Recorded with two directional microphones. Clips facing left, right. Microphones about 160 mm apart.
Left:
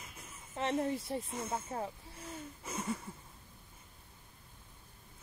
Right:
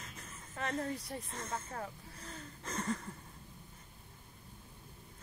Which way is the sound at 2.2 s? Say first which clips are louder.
Left 2 dB; 10° left (ahead or behind).